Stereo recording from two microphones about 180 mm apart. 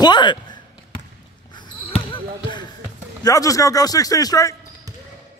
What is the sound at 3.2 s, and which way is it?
A man's voice, 20° left (ahead or behind).